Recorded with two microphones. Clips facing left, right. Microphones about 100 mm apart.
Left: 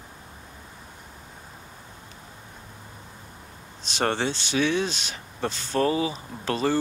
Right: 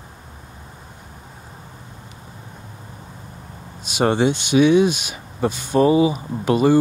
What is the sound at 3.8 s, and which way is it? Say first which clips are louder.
Speech: right 8 dB; 10° right (ahead or behind).